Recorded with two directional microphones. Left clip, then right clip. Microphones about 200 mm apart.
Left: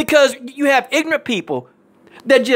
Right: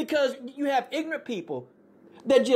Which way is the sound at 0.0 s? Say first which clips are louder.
Left 13 dB; 30° left (ahead or behind).